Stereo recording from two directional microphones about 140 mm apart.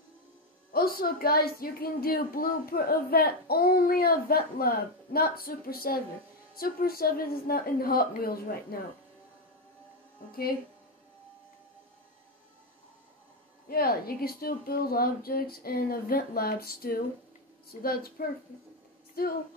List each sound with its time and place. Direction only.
0.7 s speech: 90° left
13.7 s speech: 90° left